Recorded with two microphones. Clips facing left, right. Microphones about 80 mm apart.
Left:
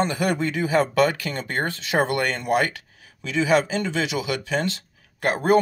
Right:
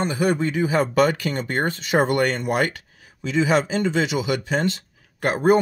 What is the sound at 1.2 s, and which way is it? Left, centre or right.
Speech, right.